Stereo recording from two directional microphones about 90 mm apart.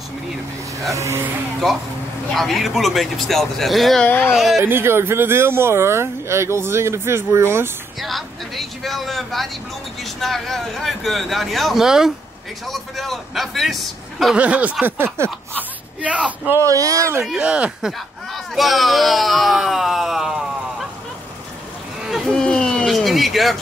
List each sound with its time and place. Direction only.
0.9 s speech: 35° right (ahead or behind)
2.3 s speech: centre (ahead or behind)
4.0 s speech: 20° left (ahead or behind)
4.3 s speech: 5° right (ahead or behind)
4.6 s speech: 25° right (ahead or behind)
8.0 s speech: centre (ahead or behind)
14.3 s speech: 15° right (ahead or behind)
16.5 s speech: 40° right (ahead or behind)
17.4 s speech: 10° right (ahead or behind)
18.3 s speech: centre (ahead or behind)
22.3 s a sound: 10° left (ahead or behind)